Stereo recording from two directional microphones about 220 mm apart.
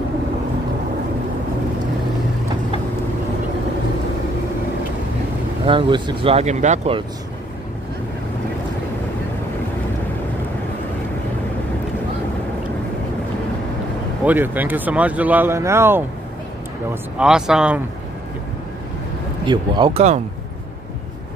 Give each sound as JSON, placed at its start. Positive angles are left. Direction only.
{"t": 5.7, "sound": "speech", "side_deg": -20}
{"t": 14.2, "sound": "speech", "side_deg": -10}
{"t": 17.2, "sound": "speech", "side_deg": -5}
{"t": 19.4, "sound": "speech", "side_deg": -20}